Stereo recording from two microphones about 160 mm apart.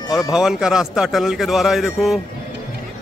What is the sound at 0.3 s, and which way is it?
A man's voice, 5° right (ahead or behind).